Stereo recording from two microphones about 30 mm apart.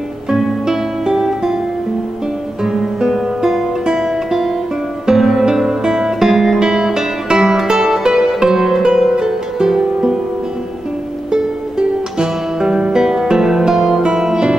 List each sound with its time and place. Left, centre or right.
0.7 s music: centre
2.6 s music: centre
12.2 s music: centre
14.1 s music: centre